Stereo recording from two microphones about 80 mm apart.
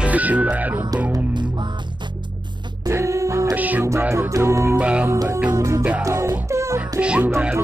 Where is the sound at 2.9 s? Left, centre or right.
Right.